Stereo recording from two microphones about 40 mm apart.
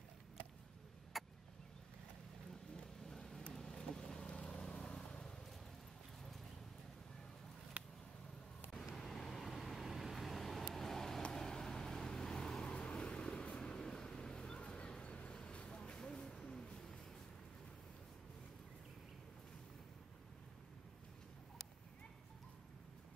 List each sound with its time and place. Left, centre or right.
1.1 s vehicle: centre
3.1 s vehicle: centre
8.9 s vehicle: centre; by 15.3 s left
15.3 s a sound: left